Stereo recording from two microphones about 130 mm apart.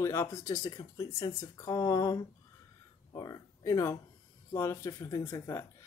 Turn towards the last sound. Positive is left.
turn(degrees=20)  # may be behind; listen again after turning